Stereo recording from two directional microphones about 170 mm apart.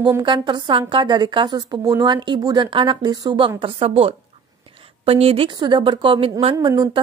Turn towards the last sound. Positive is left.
turn(degrees=-25)  # may be behind; listen again after turning